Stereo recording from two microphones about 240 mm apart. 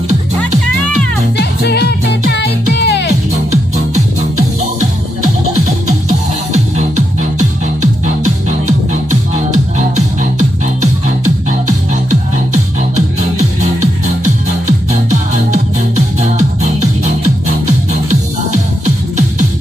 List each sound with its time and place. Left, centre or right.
0.4 s music: centre
1.4 s music: left
5.9 s music: right